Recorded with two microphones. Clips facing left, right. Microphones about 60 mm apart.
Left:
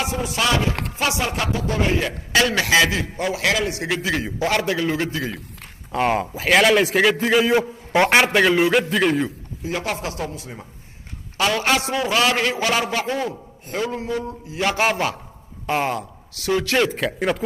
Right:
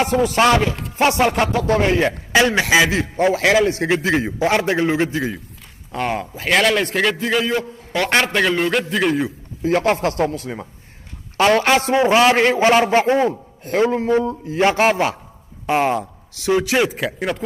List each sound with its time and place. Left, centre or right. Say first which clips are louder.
0.0 s a man's voice: right 7 dB; right
1.5 s speech: right 5 dB; right
2.3 s a man's voice: right 2 dB; right
5.9 s a man's voice: left 2 dB; centre
9.6 s a man's voice: right 9 dB; right
11.3 s a man's voice: right 5 dB; right
14.8 s a man's voice: right 4 dB; centre